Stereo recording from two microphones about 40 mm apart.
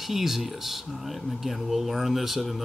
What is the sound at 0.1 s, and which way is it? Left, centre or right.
Speech, centre.